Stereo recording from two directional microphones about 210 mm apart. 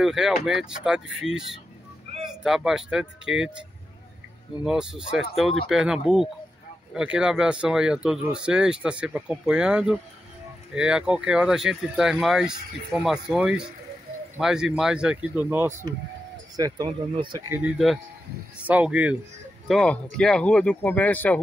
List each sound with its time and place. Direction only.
0.0 s speech: centre (ahead or behind)
4.6 s speech: 5° right (ahead or behind); by 17.4 s 20° right (ahead or behind)
17.5 s speech: 5° right (ahead or behind)